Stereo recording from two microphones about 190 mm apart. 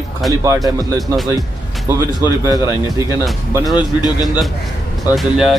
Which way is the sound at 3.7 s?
20° left (ahead or behind).